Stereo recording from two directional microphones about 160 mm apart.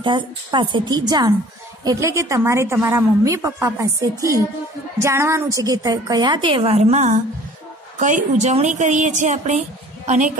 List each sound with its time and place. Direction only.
0.0 s a woman's voice: 30° right (ahead or behind); by 10.3 s 45° right (ahead or behind)